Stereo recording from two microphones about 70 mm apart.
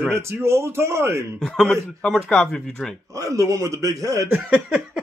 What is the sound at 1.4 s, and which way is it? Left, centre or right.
Speech, centre.